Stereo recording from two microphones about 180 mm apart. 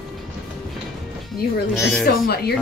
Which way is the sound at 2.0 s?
60° left (ahead or behind).